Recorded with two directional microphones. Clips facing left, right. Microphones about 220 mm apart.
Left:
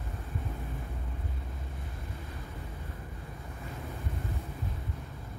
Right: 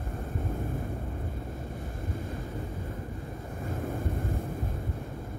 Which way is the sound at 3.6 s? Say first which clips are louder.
Right 9 dB; 45° right (ahead or behind).